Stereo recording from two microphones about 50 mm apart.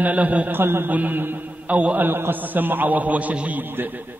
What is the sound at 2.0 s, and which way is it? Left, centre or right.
A man's voice, right.